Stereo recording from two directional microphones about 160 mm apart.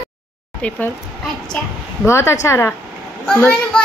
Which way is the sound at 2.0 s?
15° left (ahead or behind).